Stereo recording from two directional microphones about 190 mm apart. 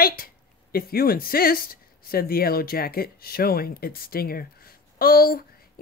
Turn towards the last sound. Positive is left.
turn(degrees=50)  # may be behind; listen again after turning